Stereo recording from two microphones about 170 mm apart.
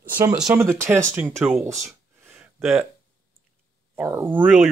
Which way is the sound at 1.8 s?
5° right (ahead or behind).